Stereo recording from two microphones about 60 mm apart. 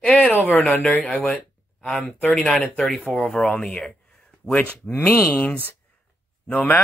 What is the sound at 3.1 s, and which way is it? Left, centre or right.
Speech, centre.